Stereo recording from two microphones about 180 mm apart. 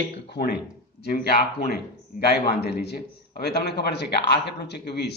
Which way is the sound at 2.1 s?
45° left (ahead or behind).